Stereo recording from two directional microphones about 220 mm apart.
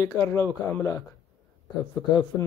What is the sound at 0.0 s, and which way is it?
Speech, 15° left (ahead or behind).